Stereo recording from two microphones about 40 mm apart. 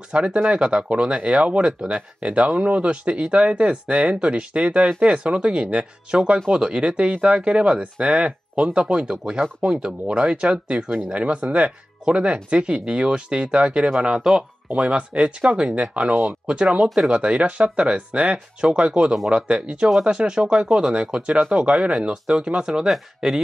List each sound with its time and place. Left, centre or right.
0.1 s speech: right
9.0 s speech: centre
10.0 s speech: right
11.1 s speech: right; by 23.4 s centre